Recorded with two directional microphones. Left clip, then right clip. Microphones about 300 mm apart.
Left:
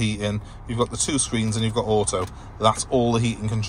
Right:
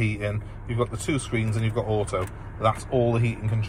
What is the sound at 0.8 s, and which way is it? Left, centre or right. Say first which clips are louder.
Speech: left 3 dB; centre.